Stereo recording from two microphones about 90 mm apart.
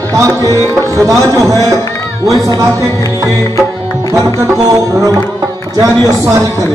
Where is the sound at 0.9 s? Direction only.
35° right (ahead or behind).